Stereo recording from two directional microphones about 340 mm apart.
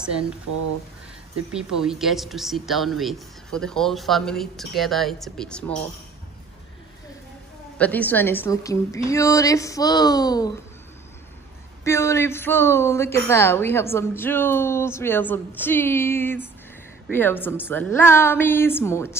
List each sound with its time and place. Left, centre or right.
0.5 s speech: right
1.5 s speech: centre
7.7 s a woman's voice: centre
11.8 s a woman's voice: centre